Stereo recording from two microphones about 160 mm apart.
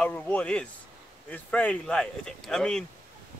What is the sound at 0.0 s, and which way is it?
Speech, 10° left (ahead or behind).